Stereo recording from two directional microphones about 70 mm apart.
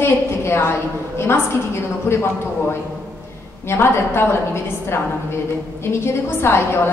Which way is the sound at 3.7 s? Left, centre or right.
Left.